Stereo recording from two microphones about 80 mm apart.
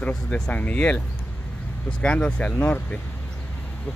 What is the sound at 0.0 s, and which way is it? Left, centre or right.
Speech, centre.